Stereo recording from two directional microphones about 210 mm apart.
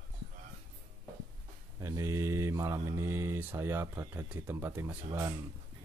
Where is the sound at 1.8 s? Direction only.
15° right (ahead or behind).